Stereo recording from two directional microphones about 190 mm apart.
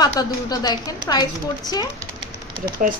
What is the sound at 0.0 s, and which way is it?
A woman's voice, 20° left (ahead or behind).